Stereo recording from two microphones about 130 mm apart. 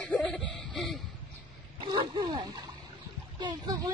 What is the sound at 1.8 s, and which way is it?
Dog, 35° right (ahead or behind).